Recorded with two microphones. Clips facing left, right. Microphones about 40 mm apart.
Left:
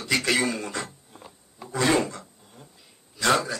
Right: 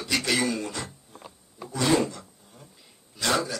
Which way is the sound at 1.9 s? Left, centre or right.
Left.